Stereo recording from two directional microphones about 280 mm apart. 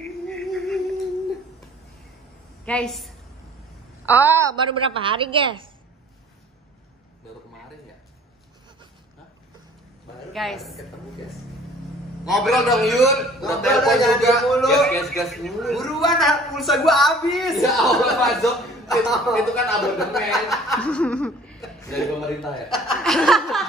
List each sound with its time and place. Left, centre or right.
0.4 s a sound: centre
2.6 s a woman's voice: centre
10.3 s a man's voice: centre
12.3 s a man's voice: centre